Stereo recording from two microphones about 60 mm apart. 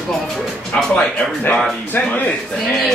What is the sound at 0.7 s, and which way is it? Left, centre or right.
Music, centre.